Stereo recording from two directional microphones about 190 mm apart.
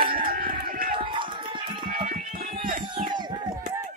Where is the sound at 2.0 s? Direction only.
50° right (ahead or behind).